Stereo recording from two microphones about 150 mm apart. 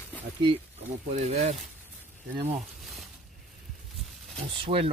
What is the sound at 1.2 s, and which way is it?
Speech, 45° right (ahead or behind).